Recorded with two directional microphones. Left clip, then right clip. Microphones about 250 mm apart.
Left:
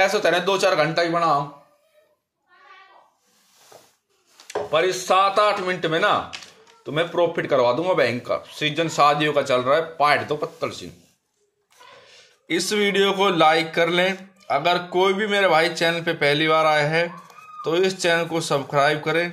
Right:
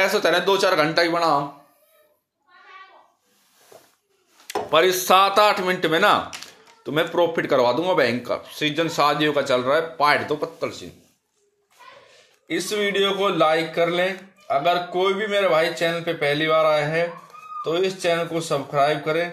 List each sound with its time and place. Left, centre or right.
0.0 s speech: centre
4.5 s speech: centre
12.1 s speech: centre